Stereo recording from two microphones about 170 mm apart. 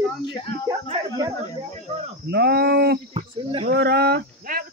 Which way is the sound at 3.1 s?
35° right (ahead or behind).